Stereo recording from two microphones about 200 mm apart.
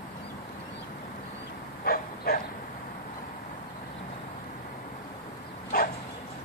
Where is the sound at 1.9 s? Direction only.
45° left (ahead or behind).